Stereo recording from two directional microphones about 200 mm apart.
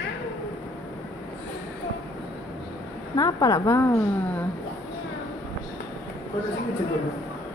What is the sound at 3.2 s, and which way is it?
Speech, 20° left (ahead or behind).